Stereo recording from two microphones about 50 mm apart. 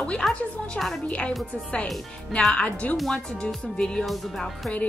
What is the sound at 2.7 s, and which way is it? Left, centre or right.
Speech, left.